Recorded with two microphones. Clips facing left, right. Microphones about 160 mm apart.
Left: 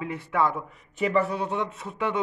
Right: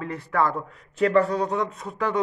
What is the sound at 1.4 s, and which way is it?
Speech, 35° right (ahead or behind).